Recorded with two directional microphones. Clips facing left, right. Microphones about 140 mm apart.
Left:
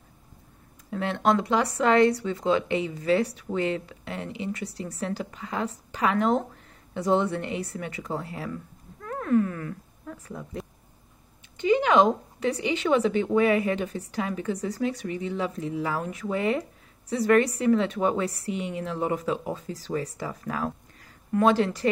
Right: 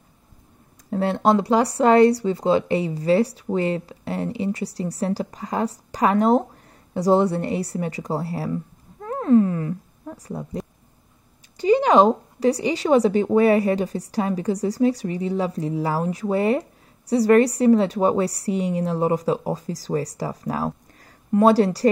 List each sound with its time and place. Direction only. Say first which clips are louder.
0.8 s speech: right 5 dB; 35° right (ahead or behind)
9.0 s a sound: right 7 dB; 30° right (ahead or behind)
10.1 s speech: right 6 dB; 35° right (ahead or behind)